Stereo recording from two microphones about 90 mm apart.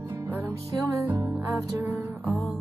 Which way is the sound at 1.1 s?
20° right (ahead or behind).